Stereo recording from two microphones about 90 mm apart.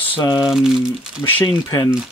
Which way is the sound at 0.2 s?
50° left (ahead or behind).